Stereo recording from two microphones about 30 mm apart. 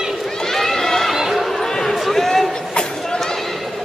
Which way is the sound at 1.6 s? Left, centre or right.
Centre.